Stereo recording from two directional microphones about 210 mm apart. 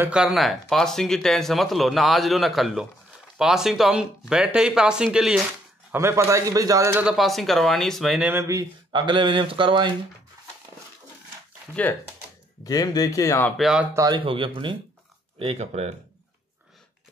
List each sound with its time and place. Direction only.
0.0 s speech: 5° right (ahead or behind)
5.9 s a man's voice: 15° right (ahead or behind)
11.8 s speech: 5° left (ahead or behind)
12.6 s speech: 15° left (ahead or behind)
13.6 s speech: 5° right (ahead or behind)
13.9 s speech: 20° right (ahead or behind)